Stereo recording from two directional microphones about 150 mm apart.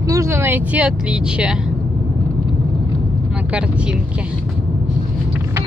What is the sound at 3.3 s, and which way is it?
Speech, 5° right (ahead or behind).